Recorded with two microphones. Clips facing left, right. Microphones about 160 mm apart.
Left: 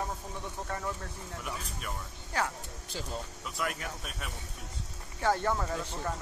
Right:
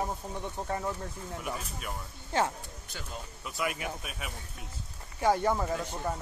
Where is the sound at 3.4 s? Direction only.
5° right (ahead or behind).